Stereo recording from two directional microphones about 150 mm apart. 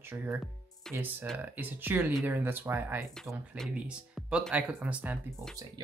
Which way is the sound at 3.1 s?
5° left (ahead or behind).